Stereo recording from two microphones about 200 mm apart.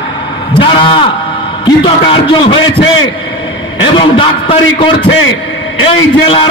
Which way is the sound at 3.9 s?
25° left (ahead or behind).